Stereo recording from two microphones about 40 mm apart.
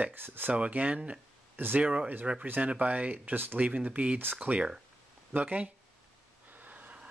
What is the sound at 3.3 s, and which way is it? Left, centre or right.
Speech, right.